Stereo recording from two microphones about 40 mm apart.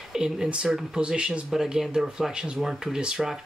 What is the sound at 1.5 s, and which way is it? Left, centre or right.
Speech, centre.